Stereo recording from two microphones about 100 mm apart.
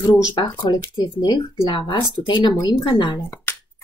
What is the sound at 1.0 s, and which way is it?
Speech, 45° left (ahead or behind).